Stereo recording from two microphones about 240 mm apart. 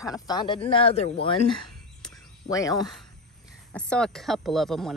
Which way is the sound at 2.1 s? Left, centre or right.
Centre.